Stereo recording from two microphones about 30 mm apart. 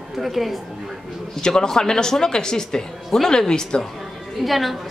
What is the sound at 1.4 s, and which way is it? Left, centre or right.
Speech, left.